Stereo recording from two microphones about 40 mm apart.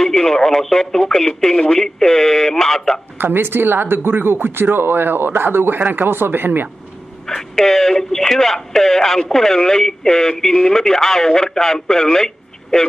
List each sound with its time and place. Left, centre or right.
0.0 s speech: centre
3.2 s speech: right
5.8 s speech: right
6.0 s speech: right
7.2 s speech: centre